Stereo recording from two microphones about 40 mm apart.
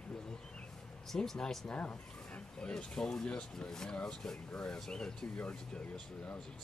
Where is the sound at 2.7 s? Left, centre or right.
Centre.